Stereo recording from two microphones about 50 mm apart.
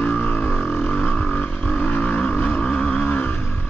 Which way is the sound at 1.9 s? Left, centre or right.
Left.